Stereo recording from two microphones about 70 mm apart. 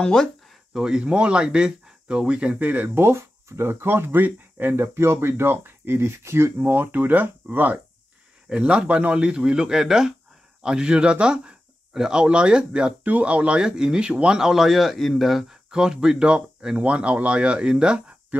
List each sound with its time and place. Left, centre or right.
0.0 s speech: centre
0.7 s speech: centre